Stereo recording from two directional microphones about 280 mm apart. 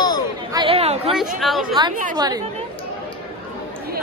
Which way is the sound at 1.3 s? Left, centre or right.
Centre.